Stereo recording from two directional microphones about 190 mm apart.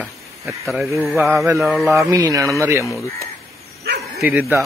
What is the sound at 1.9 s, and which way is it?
Mantra, 15° right (ahead or behind).